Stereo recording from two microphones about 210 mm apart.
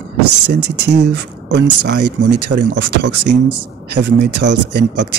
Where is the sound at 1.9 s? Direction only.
55° right (ahead or behind).